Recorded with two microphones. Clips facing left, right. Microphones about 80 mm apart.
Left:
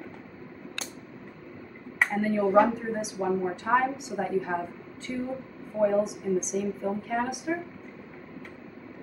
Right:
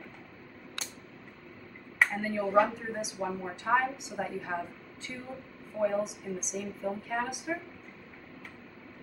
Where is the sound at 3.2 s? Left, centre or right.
Centre.